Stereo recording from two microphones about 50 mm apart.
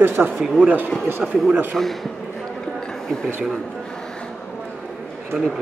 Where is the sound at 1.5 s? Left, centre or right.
Right.